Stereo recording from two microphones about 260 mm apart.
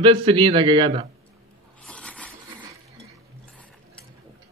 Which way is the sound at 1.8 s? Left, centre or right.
Centre.